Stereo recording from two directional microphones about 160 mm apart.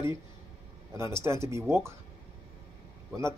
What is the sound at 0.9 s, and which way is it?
Speech, 15° right (ahead or behind).